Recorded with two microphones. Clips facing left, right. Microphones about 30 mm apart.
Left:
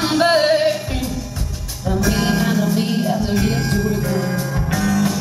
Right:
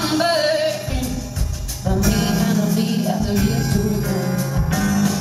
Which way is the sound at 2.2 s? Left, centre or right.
Centre.